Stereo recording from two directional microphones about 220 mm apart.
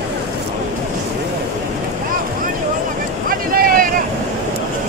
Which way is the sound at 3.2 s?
40° right (ahead or behind).